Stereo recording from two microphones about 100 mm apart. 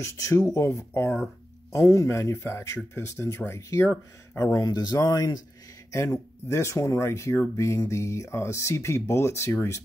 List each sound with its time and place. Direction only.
0.0 s speech: 35° left (ahead or behind)
4.6 s speech: 45° left (ahead or behind); by 9.8 s 25° left (ahead or behind)